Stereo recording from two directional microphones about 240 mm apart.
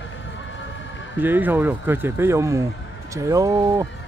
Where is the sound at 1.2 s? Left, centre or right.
Centre.